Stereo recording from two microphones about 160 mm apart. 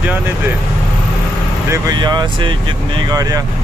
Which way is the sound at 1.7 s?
25° right (ahead or behind).